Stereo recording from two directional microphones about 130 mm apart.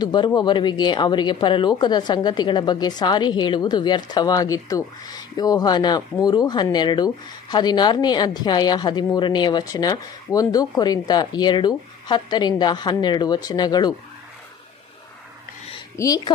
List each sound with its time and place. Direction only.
0.0 s speech: 35° left (ahead or behind)
16.0 s a woman's voice: 25° left (ahead or behind)